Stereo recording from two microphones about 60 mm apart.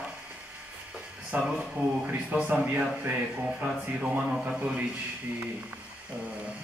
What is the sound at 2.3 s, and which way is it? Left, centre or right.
Speech, right.